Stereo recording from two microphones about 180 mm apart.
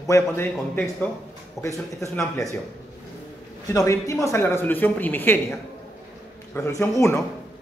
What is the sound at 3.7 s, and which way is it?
Speech, 20° left (ahead or behind).